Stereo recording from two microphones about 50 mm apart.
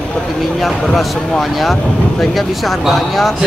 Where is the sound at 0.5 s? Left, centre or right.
Centre.